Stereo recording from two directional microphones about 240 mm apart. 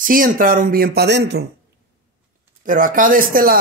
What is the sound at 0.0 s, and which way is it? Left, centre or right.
Speech, right.